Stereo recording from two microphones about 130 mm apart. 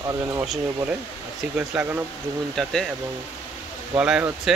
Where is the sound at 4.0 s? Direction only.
5° right (ahead or behind).